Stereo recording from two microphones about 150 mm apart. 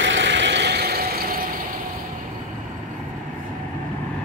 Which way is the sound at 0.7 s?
90° right.